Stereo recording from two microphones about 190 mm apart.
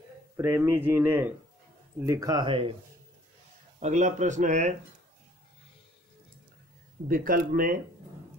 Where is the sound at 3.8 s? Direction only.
40° right (ahead or behind).